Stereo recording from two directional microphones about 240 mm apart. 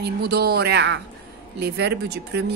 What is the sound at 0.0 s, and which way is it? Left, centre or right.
A woman's voice, right.